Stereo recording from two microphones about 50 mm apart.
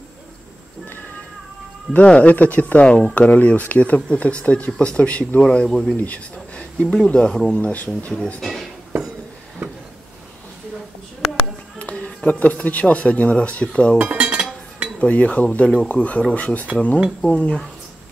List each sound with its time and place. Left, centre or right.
2.0 s speech: left
5.4 s speech: centre
5.9 s speech: left
7.5 s speech: left
8.4 s speech: centre
11.8 s a sound: left
12.3 s speech: left
13.9 s cutlery: right
15.0 s speech: left